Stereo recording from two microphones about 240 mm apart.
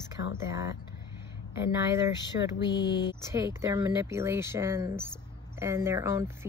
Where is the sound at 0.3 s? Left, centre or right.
Centre.